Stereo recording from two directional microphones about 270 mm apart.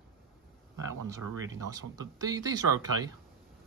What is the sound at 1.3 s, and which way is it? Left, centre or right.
Speech, centre.